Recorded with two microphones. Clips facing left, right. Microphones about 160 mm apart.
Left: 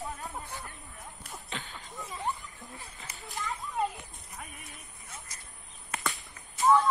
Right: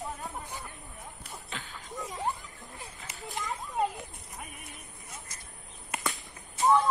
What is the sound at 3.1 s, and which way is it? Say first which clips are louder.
Children playing: right 1 dB; 20° right (ahead or behind).